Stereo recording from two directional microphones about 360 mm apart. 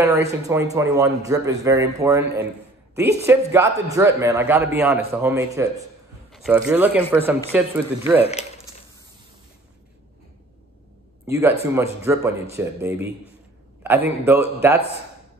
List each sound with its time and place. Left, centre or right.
0.0 s a man's voice: centre
8.2 s speech: centre
11.2 s a man's voice: centre